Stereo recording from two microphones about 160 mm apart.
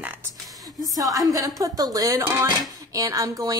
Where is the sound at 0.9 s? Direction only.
20° right (ahead or behind).